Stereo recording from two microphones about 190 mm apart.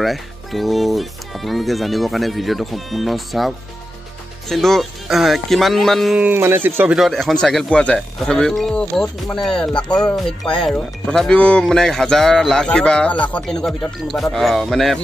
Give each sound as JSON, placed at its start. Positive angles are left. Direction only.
{"t": 0.0, "sound": "speech", "side_deg": 0}